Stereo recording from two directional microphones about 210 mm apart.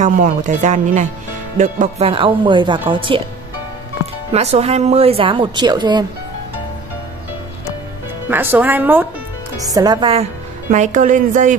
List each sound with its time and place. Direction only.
0.0 s speech: 40° right (ahead or behind)
4.3 s speech: 30° right (ahead or behind)
8.3 s speech: 10° right (ahead or behind)
10.7 s speech: 35° right (ahead or behind)